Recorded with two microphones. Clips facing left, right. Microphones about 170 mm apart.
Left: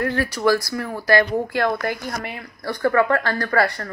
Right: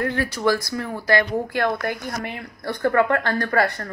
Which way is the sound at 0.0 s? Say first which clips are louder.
Left 1 dB; 20° right (ahead or behind).